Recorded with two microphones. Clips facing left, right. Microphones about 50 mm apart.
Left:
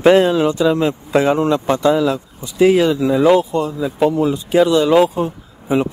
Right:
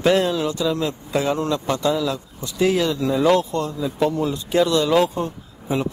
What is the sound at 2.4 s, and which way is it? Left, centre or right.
A man's voice, centre.